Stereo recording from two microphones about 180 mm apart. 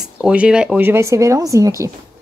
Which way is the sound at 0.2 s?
5° right (ahead or behind).